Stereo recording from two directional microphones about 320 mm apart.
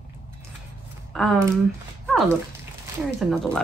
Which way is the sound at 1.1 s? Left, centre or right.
Centre.